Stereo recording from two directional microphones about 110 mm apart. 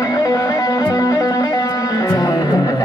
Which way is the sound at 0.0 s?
35° left (ahead or behind).